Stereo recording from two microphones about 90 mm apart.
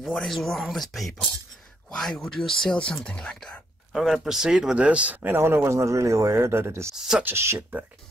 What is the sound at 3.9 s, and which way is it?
Speech, 5° right (ahead or behind).